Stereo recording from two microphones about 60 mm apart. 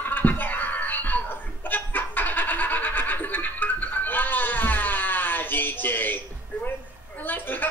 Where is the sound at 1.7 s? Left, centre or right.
Left.